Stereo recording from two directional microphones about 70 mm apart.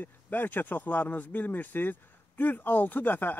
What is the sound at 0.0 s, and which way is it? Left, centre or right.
Speech, left.